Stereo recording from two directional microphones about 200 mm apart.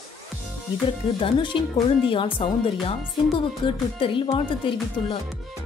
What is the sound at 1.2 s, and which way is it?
Speech, 25° left (ahead or behind).